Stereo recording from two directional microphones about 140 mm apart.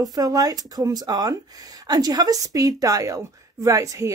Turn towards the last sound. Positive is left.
turn(degrees=-25)  # may be behind; listen again after turning